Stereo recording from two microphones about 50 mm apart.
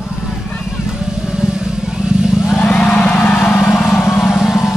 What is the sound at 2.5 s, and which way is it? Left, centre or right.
Vehicle, left.